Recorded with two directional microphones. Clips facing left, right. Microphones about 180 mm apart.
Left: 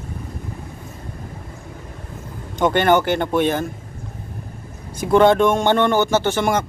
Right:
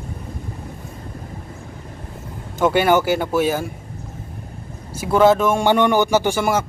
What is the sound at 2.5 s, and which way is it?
A man's voice, 5° right (ahead or behind).